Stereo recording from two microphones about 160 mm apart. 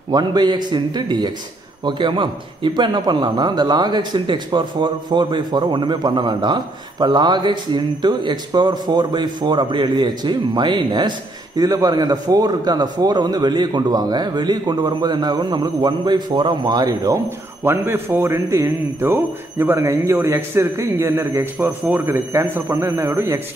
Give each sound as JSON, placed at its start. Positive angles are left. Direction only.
{"t": 0.1, "sound": "a man's voice", "side_deg": -25}